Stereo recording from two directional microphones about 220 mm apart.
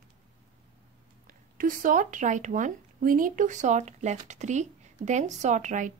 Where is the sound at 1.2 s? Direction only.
40° right (ahead or behind).